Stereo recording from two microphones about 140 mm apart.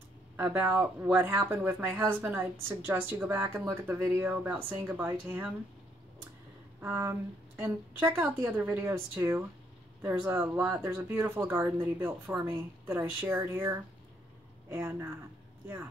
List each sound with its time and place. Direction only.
0.4 s speech: 15° right (ahead or behind)
6.8 s speech: 15° right (ahead or behind)